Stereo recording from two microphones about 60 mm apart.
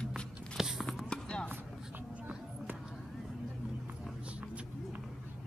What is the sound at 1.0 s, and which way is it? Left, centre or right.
Basketball bounce, centre.